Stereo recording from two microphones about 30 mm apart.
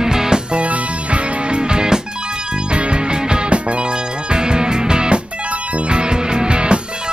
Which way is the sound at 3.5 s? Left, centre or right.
Right.